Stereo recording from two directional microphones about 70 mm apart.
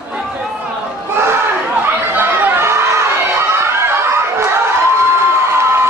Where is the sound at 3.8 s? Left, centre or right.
Right.